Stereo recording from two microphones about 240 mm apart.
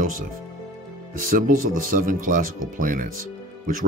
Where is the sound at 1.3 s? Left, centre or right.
Right.